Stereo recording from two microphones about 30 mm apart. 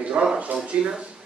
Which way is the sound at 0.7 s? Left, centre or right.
Right.